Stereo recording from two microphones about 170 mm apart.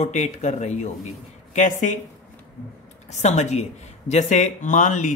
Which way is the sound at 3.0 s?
40° left (ahead or behind).